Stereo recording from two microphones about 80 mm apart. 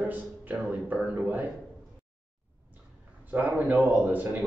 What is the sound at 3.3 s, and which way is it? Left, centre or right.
Speech, right.